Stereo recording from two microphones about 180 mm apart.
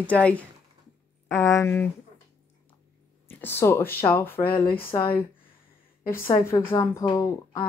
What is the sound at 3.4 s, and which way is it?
Speech, 15° left (ahead or behind).